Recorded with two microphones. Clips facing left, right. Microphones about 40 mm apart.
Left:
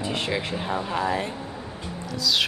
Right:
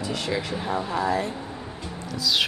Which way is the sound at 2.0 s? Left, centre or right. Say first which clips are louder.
Even; centre.